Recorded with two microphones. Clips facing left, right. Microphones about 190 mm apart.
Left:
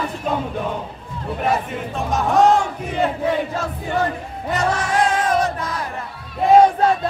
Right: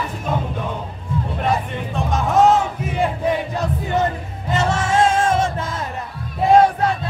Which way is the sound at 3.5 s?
20° right (ahead or behind).